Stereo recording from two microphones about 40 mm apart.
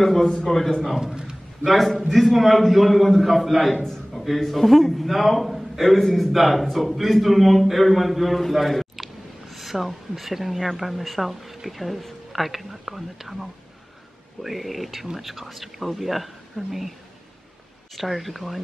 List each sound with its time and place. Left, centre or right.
0.0 s a man's voice: centre
0.9 s a man's voice: centre
1.6 s a man's voice: centre
17.9 s a man's voice: centre